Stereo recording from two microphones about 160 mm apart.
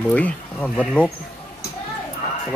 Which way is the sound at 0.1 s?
10° left (ahead or behind).